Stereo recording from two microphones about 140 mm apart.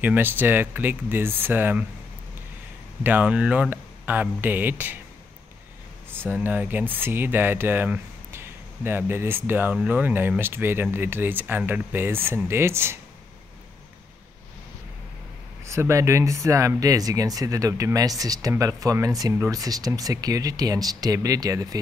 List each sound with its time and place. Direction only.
0.0 s speech: 15° right (ahead or behind)
3.0 s speech: 10° right (ahead or behind)
6.2 s speech: 15° right (ahead or behind)
15.6 s speech: 20° right (ahead or behind)